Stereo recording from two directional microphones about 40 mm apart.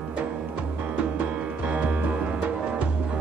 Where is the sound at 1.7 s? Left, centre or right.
Right.